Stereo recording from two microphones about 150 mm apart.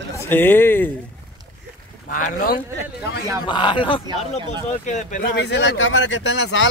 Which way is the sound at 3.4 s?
30° left (ahead or behind).